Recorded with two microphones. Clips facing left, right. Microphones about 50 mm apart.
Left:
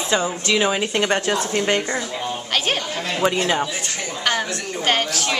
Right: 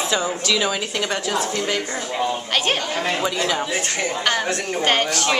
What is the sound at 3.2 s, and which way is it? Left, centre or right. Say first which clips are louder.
Speech: left 3 dB; left.